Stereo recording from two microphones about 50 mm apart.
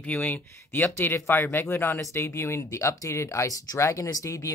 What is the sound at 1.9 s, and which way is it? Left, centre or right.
Speech, left.